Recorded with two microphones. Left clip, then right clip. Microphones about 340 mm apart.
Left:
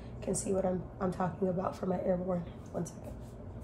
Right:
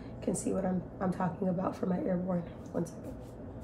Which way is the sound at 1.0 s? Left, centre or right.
Centre.